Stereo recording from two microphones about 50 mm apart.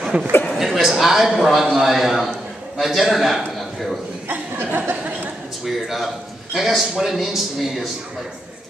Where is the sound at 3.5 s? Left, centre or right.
Centre.